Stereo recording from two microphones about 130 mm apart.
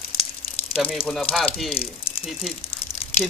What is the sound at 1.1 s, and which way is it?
Speech, centre (ahead or behind).